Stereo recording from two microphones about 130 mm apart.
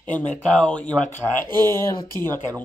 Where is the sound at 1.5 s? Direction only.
30° right (ahead or behind).